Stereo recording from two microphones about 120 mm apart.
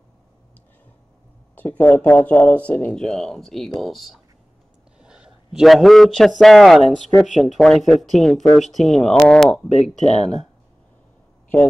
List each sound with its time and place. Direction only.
1.5 s a man's voice: 15° left (ahead or behind)
10.0 s speech: 65° left (ahead or behind)